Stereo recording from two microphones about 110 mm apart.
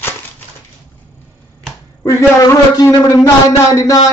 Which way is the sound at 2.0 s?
30° left (ahead or behind).